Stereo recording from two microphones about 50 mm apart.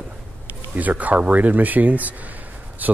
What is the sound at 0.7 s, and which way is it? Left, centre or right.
Speech, right.